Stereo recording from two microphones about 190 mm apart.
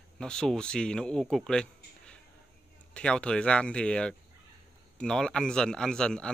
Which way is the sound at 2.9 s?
5° left (ahead or behind).